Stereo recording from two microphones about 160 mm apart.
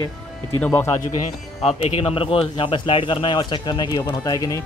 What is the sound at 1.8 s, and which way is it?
Speech, 35° left (ahead or behind).